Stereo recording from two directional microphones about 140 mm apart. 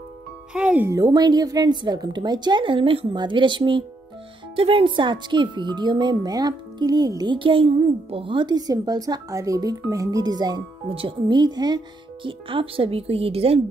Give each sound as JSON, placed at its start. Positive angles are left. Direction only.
{"t": 0.5, "sound": "speech", "side_deg": -5}
{"t": 0.8, "sound": "speech", "side_deg": -25}
{"t": 10.9, "sound": "speech", "side_deg": -40}